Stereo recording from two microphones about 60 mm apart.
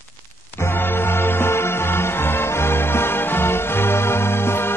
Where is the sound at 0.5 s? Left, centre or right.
Left.